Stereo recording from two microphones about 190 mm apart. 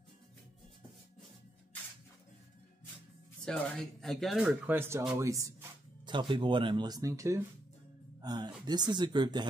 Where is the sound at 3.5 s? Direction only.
Centre (ahead or behind).